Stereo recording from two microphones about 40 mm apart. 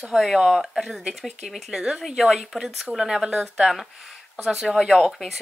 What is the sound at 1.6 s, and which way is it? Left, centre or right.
Speech, centre.